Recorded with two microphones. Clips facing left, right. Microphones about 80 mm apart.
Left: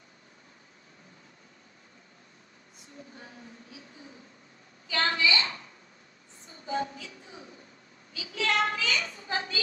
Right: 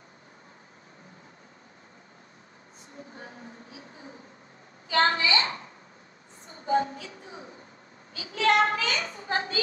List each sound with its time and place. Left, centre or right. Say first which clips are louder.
3.2 s a woman's voice: right 4 dB; right